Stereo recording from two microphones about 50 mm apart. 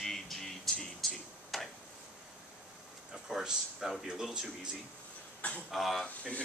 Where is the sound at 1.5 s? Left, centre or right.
Centre.